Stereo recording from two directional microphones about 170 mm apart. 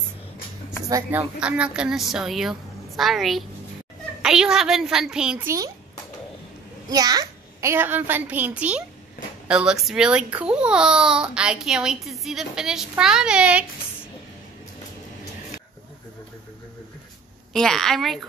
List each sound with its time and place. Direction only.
0.8 s a woman's voice: 20° right (ahead or behind)
1.4 s speech: 5° right (ahead or behind)
6.9 s a child's voice: 20° right (ahead or behind); by 13.7 s 5° right (ahead or behind)
17.5 s speech: 5° left (ahead or behind)